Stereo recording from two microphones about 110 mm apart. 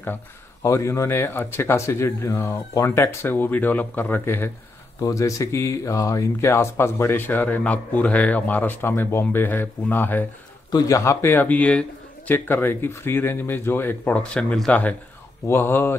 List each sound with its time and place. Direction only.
0.6 s speech: 25° left (ahead or behind)
5.0 s speech: 30° left (ahead or behind)
10.7 s speech: 30° left (ahead or behind)